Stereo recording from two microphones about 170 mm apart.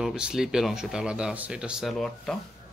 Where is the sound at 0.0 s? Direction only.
5° right (ahead or behind).